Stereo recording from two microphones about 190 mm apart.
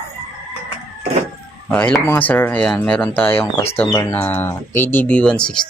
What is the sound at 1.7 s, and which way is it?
Speech, 5° left (ahead or behind).